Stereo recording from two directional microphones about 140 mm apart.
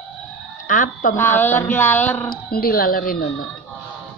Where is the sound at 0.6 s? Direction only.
70° left (ahead or behind).